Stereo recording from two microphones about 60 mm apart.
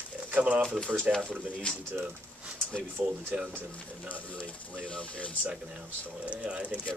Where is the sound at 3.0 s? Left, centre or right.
Right.